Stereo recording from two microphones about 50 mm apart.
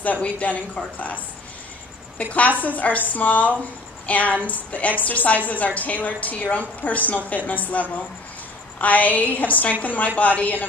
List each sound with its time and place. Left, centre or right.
0.0 s a woman's voice: left